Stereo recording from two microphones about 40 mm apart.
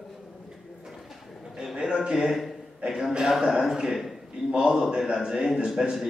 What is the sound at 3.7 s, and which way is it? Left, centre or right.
A man's voice, centre.